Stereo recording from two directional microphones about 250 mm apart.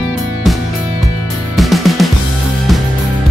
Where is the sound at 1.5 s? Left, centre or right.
Centre.